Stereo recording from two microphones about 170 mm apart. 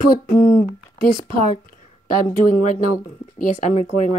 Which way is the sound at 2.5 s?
45° left (ahead or behind).